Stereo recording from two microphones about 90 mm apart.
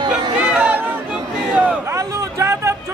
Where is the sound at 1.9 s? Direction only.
35° right (ahead or behind).